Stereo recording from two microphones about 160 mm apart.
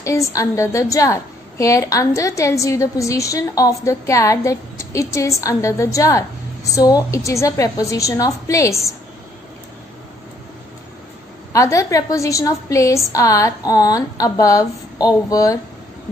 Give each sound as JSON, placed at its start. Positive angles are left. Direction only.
{"t": 0.0, "sound": "a woman's voice", "side_deg": 20}
{"t": 11.5, "sound": "a woman's voice", "side_deg": 20}